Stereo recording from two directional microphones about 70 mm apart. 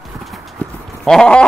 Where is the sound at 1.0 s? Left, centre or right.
Centre.